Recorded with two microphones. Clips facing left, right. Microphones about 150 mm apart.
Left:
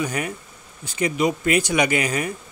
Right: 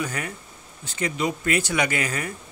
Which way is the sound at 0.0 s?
15° left (ahead or behind).